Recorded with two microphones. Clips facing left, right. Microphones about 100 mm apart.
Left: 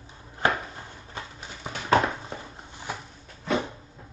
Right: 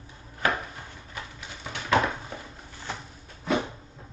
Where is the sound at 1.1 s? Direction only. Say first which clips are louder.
Left 1 dB; 30° left (ahead or behind).